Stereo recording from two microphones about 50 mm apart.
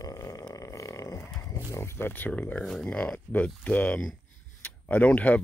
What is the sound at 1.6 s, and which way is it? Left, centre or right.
Speech, left.